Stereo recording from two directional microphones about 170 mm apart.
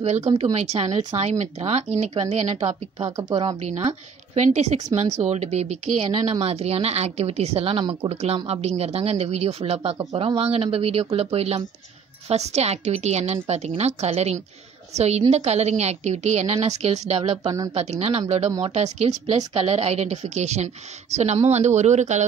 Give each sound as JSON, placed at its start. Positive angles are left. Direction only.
{"t": 0.0, "sound": "a woman's voice", "side_deg": -40}